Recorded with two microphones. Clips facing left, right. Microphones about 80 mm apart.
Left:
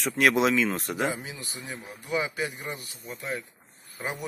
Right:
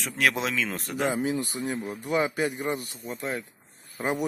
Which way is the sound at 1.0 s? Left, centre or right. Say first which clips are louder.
Right 5 dB; right.